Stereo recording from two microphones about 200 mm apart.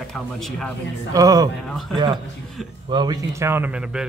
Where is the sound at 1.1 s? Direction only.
20° right (ahead or behind).